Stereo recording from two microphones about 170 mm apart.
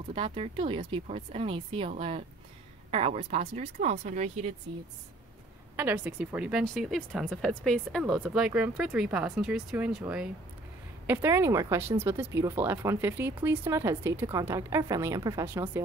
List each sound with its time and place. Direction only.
0.1 s speech: 30° right (ahead or behind)
5.8 s speech: 10° right (ahead or behind)
8.0 s speech: 10° right (ahead or behind)